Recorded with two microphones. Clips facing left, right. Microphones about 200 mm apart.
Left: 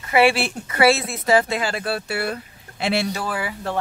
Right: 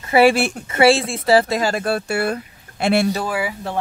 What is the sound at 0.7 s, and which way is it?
Speech, 30° right (ahead or behind).